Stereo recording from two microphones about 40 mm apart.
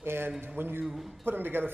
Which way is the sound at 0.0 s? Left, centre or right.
Right.